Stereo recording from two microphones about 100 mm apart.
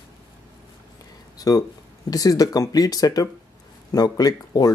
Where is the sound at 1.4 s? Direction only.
40° left (ahead or behind).